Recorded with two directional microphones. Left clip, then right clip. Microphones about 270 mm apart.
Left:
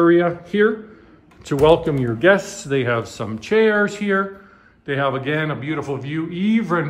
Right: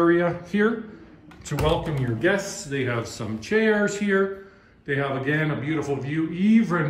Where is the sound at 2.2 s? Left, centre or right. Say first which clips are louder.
Left 8 dB; centre.